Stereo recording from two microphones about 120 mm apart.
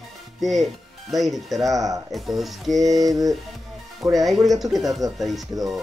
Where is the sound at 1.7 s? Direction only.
30° right (ahead or behind).